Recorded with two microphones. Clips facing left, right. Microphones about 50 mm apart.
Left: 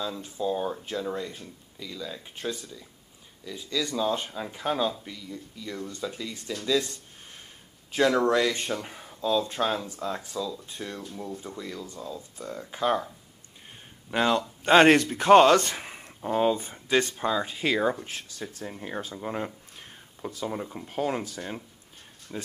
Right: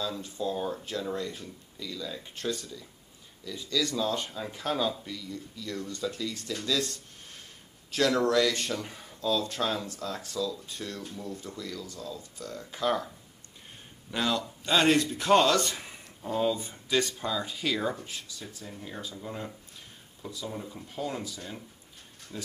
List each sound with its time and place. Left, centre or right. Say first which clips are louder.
0.4 s speech: left 3 dB; centre
14.1 s speech: left 5 dB; left
14.6 s speech: left 7 dB; left
18.0 s speech: left 4 dB; left
22.3 s speech: left 3 dB; left